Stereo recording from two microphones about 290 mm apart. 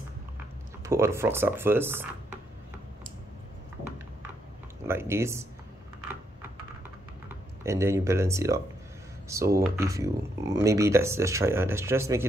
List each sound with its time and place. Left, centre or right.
0.8 s speech: centre
4.8 s speech: centre
7.2 s speech: centre